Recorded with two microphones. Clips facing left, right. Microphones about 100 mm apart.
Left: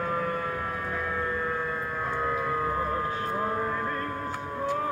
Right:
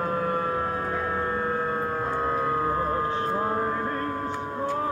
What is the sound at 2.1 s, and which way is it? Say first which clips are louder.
Music: right 2 dB; 30° right (ahead or behind).